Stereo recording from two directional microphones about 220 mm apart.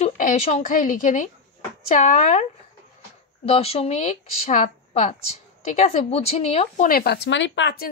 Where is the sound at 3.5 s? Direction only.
25° left (ahead or behind).